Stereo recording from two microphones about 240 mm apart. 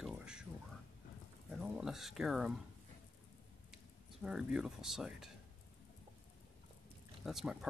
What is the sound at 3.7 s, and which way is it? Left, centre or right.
Speech, centre.